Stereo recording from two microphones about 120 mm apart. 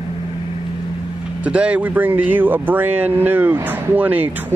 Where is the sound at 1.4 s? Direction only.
10° right (ahead or behind).